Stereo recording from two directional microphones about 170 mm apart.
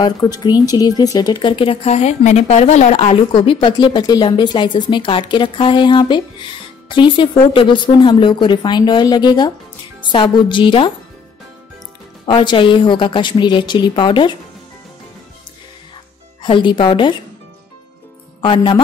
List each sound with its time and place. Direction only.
0.0 s speech: 25° left (ahead or behind)
12.3 s speech: 30° left (ahead or behind)
16.4 s speech: 30° left (ahead or behind)
18.4 s speech: 30° left (ahead or behind)